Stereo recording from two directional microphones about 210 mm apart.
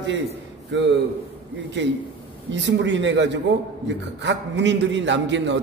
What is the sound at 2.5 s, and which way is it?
A man's voice, 60° right (ahead or behind).